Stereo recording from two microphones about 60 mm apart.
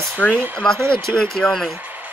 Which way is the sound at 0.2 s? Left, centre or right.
Left.